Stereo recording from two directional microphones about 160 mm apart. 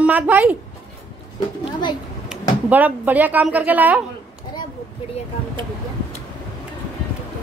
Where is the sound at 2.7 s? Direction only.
10° right (ahead or behind).